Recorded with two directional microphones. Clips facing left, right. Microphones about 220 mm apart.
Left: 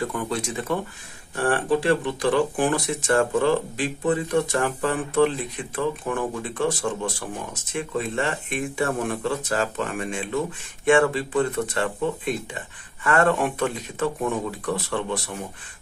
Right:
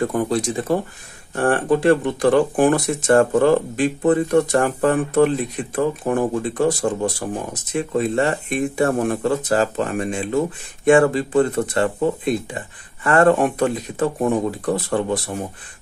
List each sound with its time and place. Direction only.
0.0 s speech: 40° right (ahead or behind)
1.3 s speech: 50° right (ahead or behind)